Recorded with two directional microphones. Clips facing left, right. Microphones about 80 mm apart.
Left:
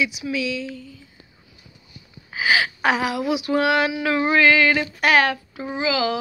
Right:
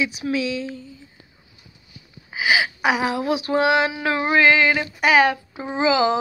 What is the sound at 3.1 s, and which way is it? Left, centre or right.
Speech, right.